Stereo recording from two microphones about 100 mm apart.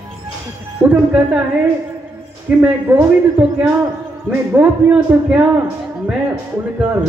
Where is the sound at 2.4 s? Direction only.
20° right (ahead or behind).